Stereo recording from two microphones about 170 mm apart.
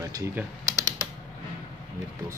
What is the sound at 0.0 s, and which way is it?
Speech, 20° right (ahead or behind).